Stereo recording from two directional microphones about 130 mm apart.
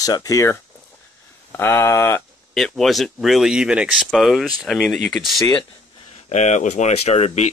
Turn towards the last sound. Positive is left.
turn(degrees=55)  # may be behind; listen again after turning